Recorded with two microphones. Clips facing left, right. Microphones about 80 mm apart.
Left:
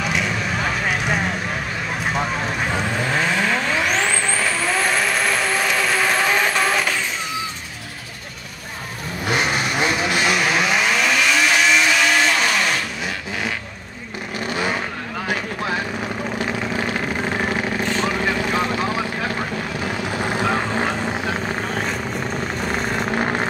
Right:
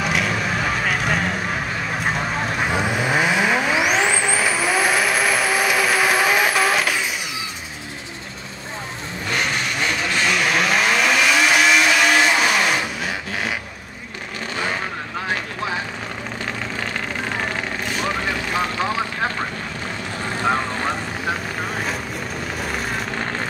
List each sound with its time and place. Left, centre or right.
0.0 s vehicle: centre
2.6 s vehicle: centre
9.2 s vehicle: centre
14.5 s vehicle: centre
16.7 s vehicle: centre
20.1 s vehicle: centre
22.6 s vehicle: centre
23.0 s vehicle: left